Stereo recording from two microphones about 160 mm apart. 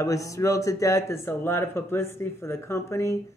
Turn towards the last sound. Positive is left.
turn(degrees=20)  # may be behind; listen again after turning